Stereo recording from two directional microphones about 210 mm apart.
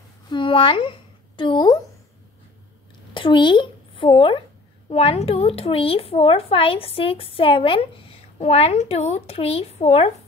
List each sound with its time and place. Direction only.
0.3 s a woman's voice: 25° left (ahead or behind)
3.2 s speech: 25° left (ahead or behind)